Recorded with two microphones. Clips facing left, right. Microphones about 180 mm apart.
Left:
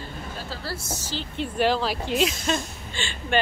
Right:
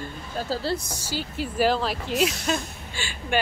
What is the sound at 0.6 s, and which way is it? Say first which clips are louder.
A woman's voice: right 5 dB; 15° right (ahead or behind).